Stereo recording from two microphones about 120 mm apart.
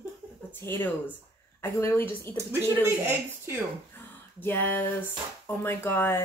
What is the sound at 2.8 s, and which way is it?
Speech, 15° right (ahead or behind).